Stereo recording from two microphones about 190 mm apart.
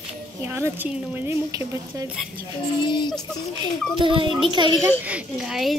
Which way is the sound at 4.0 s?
25° right (ahead or behind).